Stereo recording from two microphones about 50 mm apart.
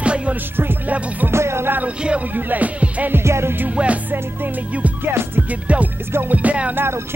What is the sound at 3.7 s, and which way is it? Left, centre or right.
Music, right.